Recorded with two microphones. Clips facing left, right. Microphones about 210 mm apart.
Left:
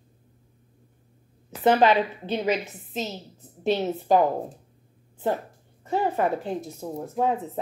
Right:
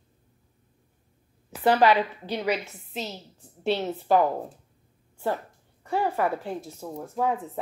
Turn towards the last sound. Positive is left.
turn(degrees=20)  # may be behind; listen again after turning